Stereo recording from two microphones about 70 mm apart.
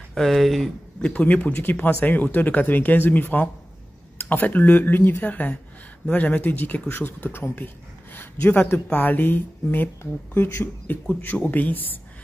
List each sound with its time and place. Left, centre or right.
0.1 s speech: centre
1.0 s speech: centre